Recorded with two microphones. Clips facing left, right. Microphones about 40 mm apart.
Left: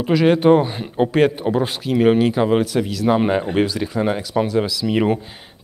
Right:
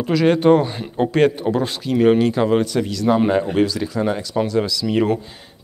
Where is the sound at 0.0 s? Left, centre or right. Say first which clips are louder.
Left 1 dB; centre.